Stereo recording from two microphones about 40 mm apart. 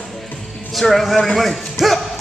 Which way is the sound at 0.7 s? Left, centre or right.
Centre.